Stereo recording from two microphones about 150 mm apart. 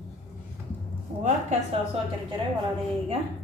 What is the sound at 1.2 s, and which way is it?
Speech, 50° right (ahead or behind).